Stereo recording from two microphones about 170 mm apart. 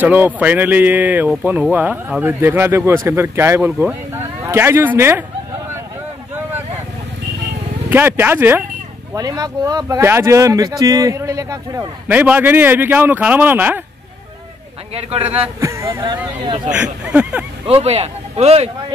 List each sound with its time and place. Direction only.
0.0 s speech: 10° right (ahead or behind)
7.9 s speech: 10° right (ahead or behind)
15.0 s speech: 35° right (ahead or behind)
15.6 s speech: 15° right (ahead or behind)
16.4 s speech: 25° right (ahead or behind)
16.7 s speech: 5° right (ahead or behind)
17.6 s speech: 35° right (ahead or behind)